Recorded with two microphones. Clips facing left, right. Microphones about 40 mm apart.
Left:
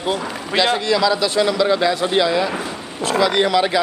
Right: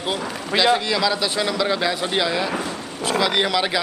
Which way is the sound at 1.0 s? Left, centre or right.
Right.